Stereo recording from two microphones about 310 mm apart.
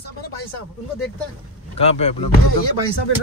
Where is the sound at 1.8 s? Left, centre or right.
Centre.